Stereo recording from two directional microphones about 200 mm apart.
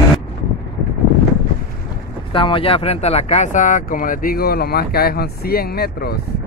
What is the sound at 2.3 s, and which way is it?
Speech, 25° left (ahead or behind).